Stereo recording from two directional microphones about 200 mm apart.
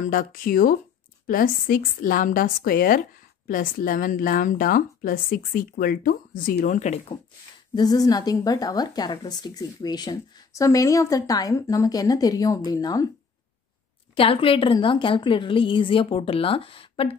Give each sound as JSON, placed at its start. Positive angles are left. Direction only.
{"t": 0.0, "sound": "a woman's voice", "side_deg": 45}
{"t": 7.7, "sound": "a woman's voice", "side_deg": 20}
{"t": 14.1, "sound": "a woman's voice", "side_deg": 25}